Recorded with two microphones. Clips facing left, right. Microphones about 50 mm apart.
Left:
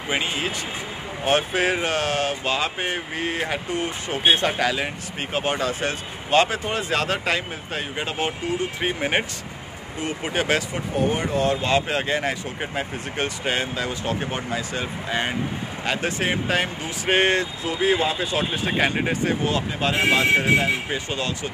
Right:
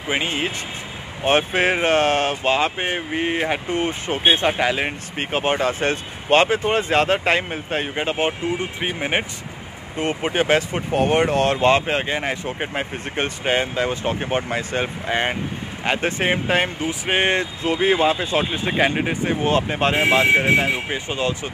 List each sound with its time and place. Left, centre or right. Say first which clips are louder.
0.1 s speech: right 3 dB; right
1.2 s speech: right 3 dB; right
3.7 s speech: right 3 dB; right
8.8 s speech: even; centre
9.9 s speech: right 4 dB; right
10.9 s speech: right 5 dB; right
11.8 s speech: right 1 dB; right
18.7 s speech: right 2 dB; centre
19.4 s speech: right 4 dB; right